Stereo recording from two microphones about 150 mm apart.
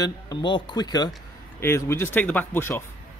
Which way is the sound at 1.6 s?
15° left (ahead or behind).